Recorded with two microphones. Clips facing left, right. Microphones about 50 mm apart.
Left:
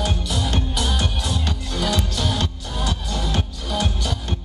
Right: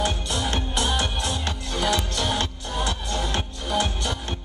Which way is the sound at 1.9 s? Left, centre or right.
Centre.